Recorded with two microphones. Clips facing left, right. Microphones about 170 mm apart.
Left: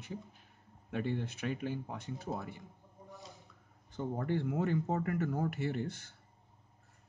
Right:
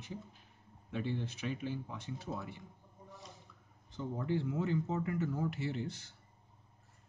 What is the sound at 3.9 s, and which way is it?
Speech, 55° left (ahead or behind).